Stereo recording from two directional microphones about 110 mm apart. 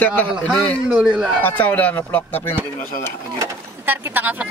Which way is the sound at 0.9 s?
10° right (ahead or behind).